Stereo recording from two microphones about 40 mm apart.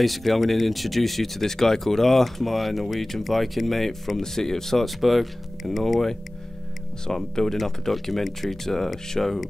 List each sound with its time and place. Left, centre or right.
0.0 s speech: centre